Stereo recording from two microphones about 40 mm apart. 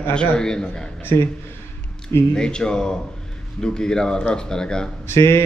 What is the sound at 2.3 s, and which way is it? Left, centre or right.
A man's voice, left.